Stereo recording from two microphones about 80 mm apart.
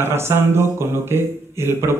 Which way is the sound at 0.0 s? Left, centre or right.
Right.